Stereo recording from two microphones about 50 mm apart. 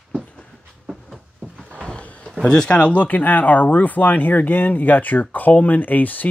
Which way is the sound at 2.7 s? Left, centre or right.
Left.